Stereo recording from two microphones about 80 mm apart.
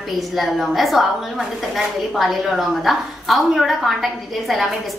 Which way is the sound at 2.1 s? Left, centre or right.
Centre.